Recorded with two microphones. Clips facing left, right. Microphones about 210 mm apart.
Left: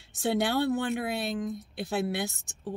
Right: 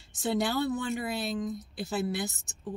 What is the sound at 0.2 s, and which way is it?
Speech, 65° left (ahead or behind).